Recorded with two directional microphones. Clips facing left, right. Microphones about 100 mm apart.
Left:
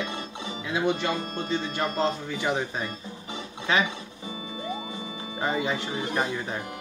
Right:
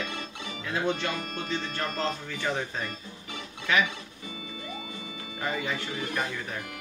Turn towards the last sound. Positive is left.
turn(degrees=25)  # may be behind; listen again after turning